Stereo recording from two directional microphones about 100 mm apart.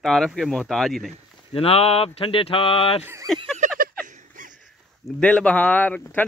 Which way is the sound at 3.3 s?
5° left (ahead or behind).